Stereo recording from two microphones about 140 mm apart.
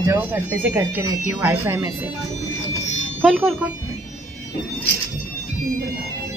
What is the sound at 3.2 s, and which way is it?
Speech, centre (ahead or behind).